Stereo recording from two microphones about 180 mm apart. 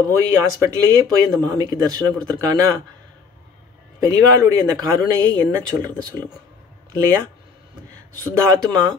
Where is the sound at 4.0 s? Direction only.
20° right (ahead or behind).